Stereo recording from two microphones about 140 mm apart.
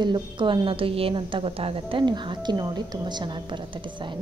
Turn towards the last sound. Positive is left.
turn(degrees=-35)  # may be behind; listen again after turning